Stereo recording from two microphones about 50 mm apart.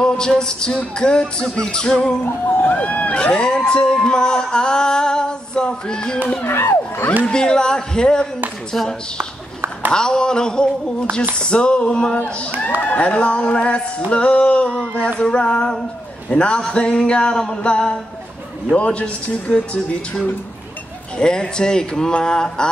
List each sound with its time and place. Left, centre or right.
0.0 s music: centre
0.4 s a man's voice: centre
2.2 s speech: left
2.7 s a man's voice: left
6.4 s speech: left
7.2 s a man's voice: centre
9.9 s a man's voice: centre
12.8 s a sound: left
15.1 s a man's voice: centre
16.3 s a sound: left
17.4 s a man's voice: centre
18.8 s a sound: left
21.2 s a man's voice: centre